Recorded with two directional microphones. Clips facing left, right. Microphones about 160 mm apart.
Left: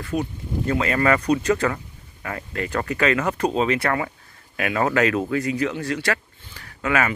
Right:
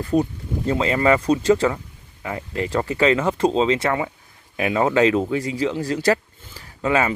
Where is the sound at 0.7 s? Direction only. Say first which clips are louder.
Right 2 dB; 20° right (ahead or behind).